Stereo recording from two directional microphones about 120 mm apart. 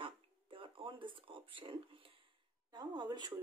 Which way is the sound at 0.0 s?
45° right (ahead or behind).